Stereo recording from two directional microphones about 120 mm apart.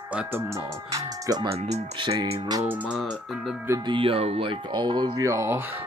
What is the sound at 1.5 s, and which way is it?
Speech, 55° right (ahead or behind).